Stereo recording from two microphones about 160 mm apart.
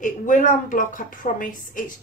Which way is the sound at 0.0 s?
55° left (ahead or behind).